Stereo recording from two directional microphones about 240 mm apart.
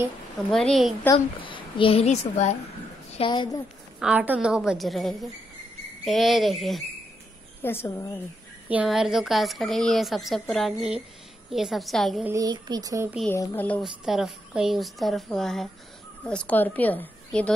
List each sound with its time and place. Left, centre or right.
0.5 s speech: centre
1.1 s a child's voice: left
4.0 s a woman's voice: centre
8.6 s speech: centre
12.3 s speech: centre
13.2 s a woman's voice: centre